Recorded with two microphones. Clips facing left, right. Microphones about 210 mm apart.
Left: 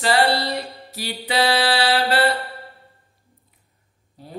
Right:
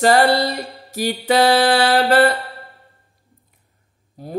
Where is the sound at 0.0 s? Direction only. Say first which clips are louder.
Right 5 dB; 45° right (ahead or behind).